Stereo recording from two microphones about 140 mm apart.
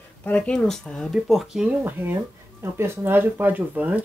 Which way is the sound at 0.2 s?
10° left (ahead or behind).